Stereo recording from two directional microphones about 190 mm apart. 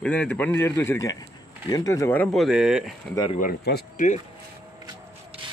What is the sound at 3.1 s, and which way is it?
Speech, 25° left (ahead or behind).